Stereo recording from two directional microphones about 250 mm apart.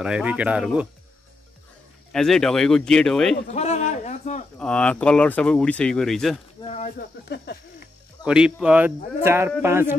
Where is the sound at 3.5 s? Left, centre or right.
Left.